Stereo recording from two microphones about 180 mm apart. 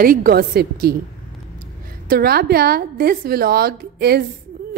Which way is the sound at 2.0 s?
55° right (ahead or behind).